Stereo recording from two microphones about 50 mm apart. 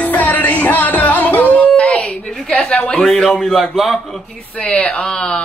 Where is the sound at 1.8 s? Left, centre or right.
Centre.